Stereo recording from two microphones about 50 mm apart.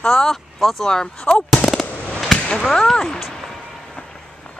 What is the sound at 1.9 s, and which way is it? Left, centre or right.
Fireworks, left.